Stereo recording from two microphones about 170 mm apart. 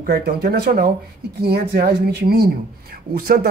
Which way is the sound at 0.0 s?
65° right (ahead or behind).